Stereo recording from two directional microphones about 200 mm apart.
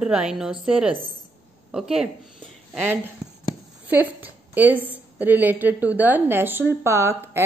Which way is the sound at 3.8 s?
10° right (ahead or behind).